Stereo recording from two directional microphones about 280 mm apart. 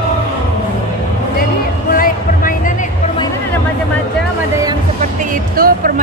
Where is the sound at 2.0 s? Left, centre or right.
Left.